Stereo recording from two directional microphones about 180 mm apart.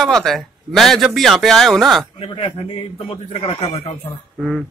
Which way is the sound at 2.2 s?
25° left (ahead or behind).